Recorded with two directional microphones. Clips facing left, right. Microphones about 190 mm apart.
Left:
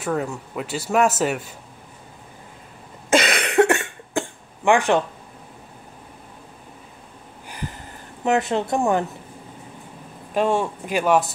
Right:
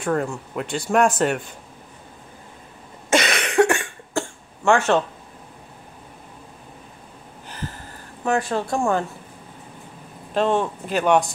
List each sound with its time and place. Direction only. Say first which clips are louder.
0.0 s speech: right 2 dB; 5° left (ahead or behind)
3.2 s cough: left 1 dB; 20° left (ahead or behind)
7.4 s a sound: even; 15° left (ahead or behind)
10.3 s speech: even; 10° left (ahead or behind)